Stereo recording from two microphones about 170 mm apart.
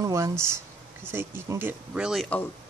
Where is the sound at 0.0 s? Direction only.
20° right (ahead or behind).